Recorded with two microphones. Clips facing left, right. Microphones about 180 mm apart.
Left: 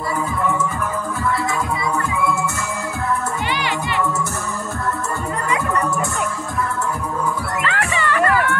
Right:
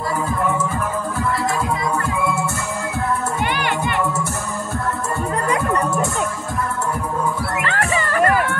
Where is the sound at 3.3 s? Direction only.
55° right (ahead or behind).